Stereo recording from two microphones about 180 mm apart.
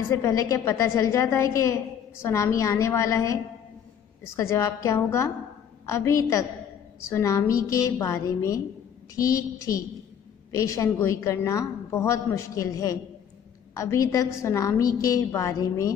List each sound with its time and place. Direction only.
0.1 s a woman's voice: 15° left (ahead or behind)
4.4 s a woman's voice: 15° left (ahead or behind)